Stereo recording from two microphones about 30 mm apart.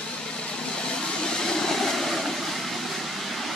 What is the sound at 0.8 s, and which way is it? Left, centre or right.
Vehicle, left.